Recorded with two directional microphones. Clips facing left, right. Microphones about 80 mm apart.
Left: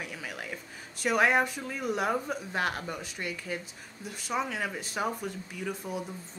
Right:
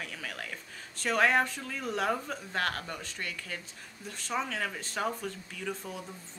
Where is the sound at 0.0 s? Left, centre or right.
Centre.